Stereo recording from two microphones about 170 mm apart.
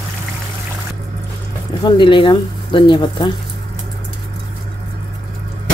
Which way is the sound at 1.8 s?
30° left (ahead or behind).